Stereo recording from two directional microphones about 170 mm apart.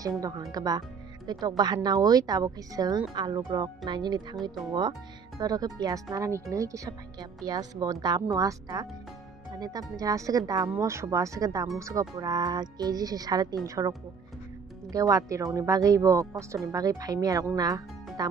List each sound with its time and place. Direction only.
0.2 s a woman's voice: 20° right (ahead or behind)
5.4 s a woman's voice: 20° right (ahead or behind)